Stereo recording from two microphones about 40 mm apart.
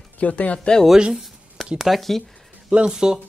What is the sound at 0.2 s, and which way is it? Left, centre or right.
Speech, left.